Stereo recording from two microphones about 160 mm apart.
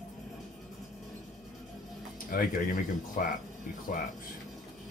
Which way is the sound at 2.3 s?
60° left (ahead or behind).